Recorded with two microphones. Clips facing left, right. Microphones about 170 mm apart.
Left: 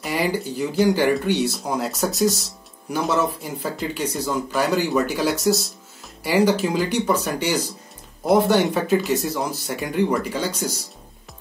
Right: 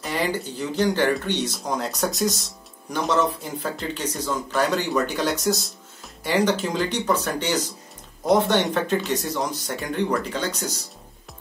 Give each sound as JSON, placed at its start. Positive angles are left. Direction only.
{"t": 0.0, "sound": "speech", "side_deg": 10}